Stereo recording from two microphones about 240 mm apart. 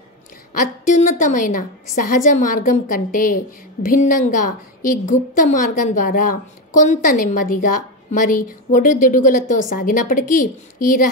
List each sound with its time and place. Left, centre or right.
0.6 s a woman's voice: left